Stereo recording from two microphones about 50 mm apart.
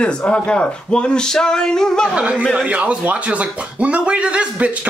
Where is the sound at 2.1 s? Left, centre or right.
Right.